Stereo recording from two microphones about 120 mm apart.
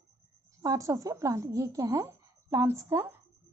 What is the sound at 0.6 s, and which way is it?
A woman's voice, 25° right (ahead or behind).